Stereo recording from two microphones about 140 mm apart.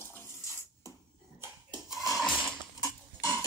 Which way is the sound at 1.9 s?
Centre (ahead or behind).